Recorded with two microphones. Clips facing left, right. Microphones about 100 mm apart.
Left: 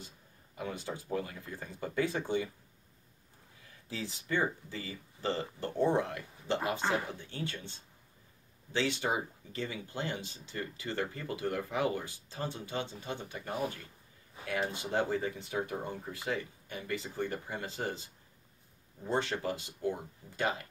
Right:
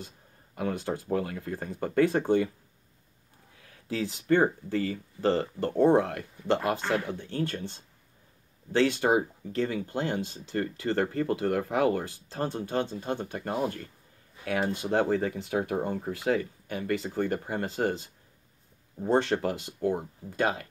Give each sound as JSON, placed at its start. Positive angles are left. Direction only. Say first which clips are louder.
{"t": 0.6, "sound": "speech", "louder": "right 8 dB", "side_deg": -55}
{"t": 3.5, "sound": "speech", "louder": "right 9 dB", "side_deg": -60}